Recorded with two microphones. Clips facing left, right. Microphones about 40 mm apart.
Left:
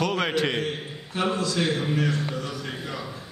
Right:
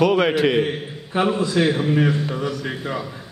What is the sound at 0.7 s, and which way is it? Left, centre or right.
A man's voice, right.